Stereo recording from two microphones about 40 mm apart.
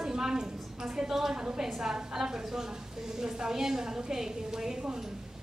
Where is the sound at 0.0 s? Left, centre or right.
Centre.